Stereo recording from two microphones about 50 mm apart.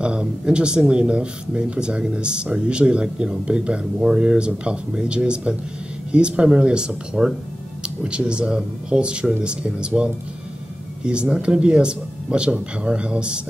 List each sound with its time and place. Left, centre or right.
0.0 s speech: right